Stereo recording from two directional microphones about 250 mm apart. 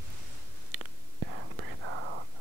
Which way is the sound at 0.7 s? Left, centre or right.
Right.